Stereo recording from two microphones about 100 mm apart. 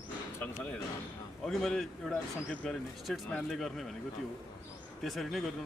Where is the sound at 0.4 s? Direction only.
20° left (ahead or behind).